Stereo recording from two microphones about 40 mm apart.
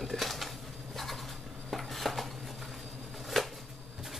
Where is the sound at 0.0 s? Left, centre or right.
Centre.